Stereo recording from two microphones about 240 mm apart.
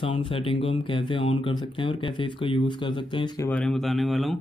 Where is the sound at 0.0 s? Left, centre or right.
Left.